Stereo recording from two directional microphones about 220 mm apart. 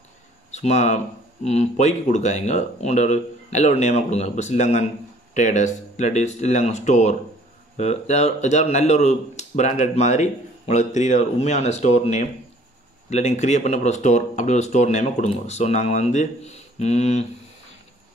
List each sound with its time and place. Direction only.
0.5 s speech: 30° left (ahead or behind)